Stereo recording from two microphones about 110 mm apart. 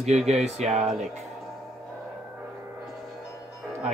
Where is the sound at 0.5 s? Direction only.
80° right.